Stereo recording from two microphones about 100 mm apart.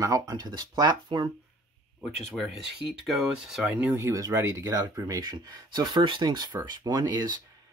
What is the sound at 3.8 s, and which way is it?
Speech, 25° right (ahead or behind).